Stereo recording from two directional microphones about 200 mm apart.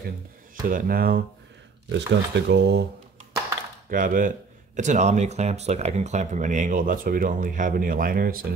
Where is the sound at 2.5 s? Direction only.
55° right (ahead or behind).